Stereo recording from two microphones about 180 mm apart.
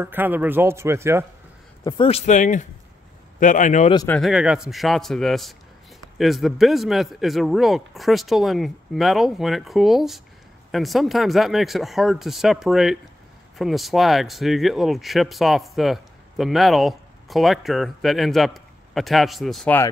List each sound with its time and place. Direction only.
0.0 s a man's voice: 10° right (ahead or behind)
1.9 s a man's voice: 30° left (ahead or behind)
4.1 s speech: centre (ahead or behind)